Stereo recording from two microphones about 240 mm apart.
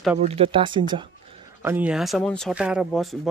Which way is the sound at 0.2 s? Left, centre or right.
Right.